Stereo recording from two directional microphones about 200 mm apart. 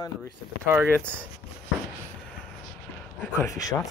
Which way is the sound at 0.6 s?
10° right (ahead or behind).